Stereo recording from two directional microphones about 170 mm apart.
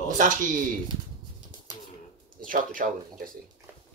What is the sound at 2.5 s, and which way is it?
Speech, 55° right (ahead or behind).